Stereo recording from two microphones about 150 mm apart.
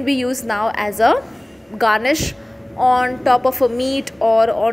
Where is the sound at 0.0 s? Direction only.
Centre (ahead or behind).